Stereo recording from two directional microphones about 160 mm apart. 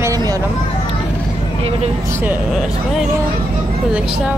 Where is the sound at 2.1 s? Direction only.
10° right (ahead or behind).